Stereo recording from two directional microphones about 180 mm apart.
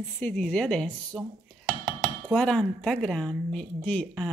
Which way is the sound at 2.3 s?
5° left (ahead or behind).